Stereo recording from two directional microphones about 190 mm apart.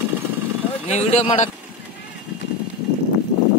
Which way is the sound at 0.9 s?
35° left (ahead or behind).